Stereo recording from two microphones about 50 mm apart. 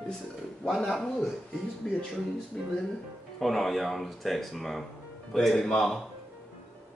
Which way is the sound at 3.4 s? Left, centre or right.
Centre.